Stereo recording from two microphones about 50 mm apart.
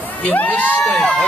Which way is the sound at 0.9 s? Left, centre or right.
Centre.